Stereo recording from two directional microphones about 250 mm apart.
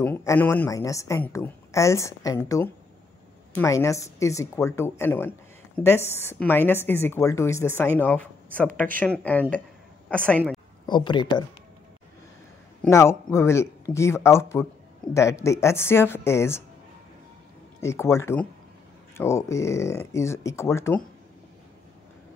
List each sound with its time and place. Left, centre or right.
0.0 s a woman's voice: centre
10.9 s a woman's voice: centre
12.8 s a woman's voice: centre
17.7 s a woman's voice: centre